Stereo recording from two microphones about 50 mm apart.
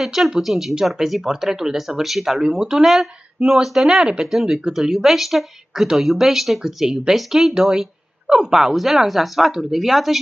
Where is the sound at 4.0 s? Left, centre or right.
Centre.